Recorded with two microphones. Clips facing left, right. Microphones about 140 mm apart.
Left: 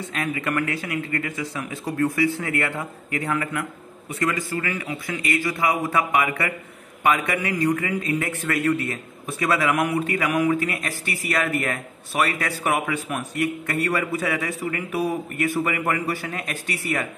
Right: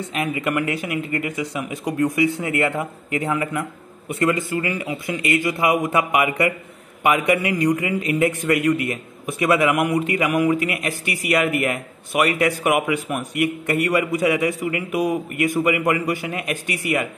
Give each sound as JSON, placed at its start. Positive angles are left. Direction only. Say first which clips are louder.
{"t": 0.1, "sound": "a man's voice", "louder": "right 3 dB", "side_deg": -20}